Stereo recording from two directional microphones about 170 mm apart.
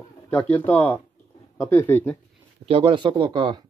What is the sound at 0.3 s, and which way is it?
Speech, 10° left (ahead or behind).